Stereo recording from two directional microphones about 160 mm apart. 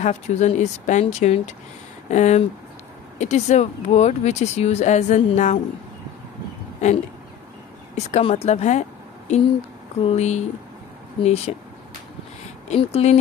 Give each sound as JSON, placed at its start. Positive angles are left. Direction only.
{"t": 0.0, "sound": "speech", "side_deg": 45}
{"t": 7.9, "sound": "speech", "side_deg": 40}
{"t": 10.0, "sound": "speech", "side_deg": 45}
{"t": 12.6, "sound": "speech", "side_deg": 40}